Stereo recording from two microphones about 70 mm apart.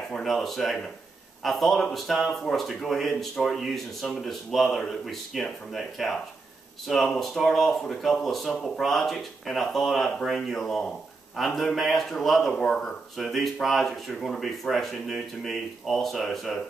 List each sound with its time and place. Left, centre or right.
0.2 s speech: centre
13.2 s speech: centre